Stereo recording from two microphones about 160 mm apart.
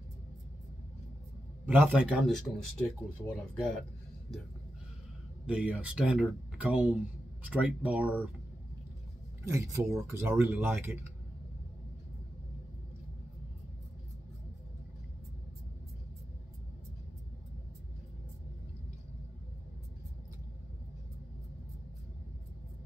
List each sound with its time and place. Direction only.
1.7 s speech: 10° right (ahead or behind)
5.5 s speech: 5° right (ahead or behind)
9.4 s speech: 20° right (ahead or behind)